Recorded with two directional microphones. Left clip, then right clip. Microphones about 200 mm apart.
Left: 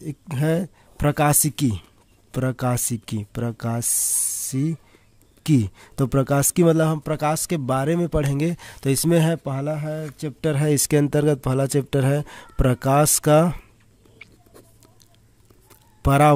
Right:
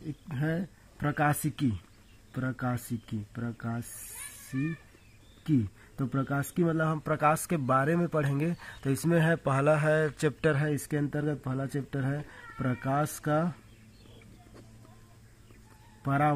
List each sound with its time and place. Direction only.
0.3 s speech: 65° left (ahead or behind)
4.5 s speech: 75° left (ahead or behind); by 9.4 s 45° left (ahead or behind)
9.4 s speech: 30° left (ahead or behind)
10.4 s speech: 45° left (ahead or behind); by 13.6 s 65° left (ahead or behind)
16.0 s speech: 65° left (ahead or behind)